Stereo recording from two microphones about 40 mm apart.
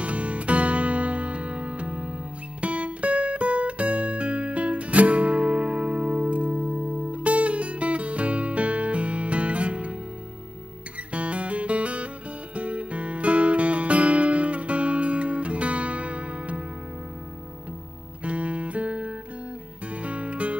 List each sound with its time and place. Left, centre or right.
0.0 s music: right
11.1 s music: right
18.2 s music: right